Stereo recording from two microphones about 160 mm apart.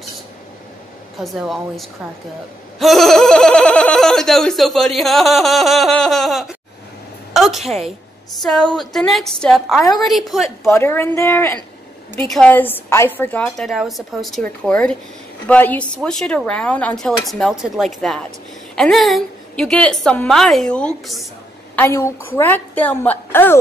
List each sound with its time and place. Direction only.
1.2 s a woman's voice: centre (ahead or behind)
10.7 s speech: 15° left (ahead or behind)
13.7 s a woman's voice: centre (ahead or behind)
21.7 s speech: 15° left (ahead or behind)